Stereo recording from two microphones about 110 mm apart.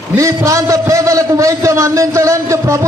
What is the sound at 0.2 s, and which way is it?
A man's voice, 30° right (ahead or behind).